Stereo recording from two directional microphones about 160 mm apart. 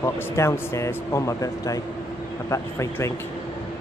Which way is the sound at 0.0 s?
20° left (ahead or behind).